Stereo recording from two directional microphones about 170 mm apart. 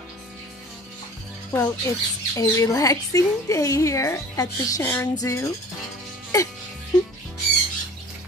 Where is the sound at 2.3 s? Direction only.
20° left (ahead or behind).